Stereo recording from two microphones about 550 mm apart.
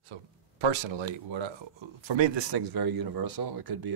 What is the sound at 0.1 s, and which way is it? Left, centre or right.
Speech, right.